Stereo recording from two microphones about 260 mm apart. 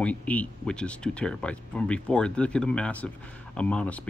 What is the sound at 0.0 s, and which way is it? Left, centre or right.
Speech, centre.